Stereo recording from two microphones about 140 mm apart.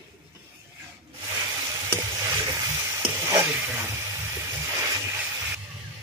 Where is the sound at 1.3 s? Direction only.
20° right (ahead or behind).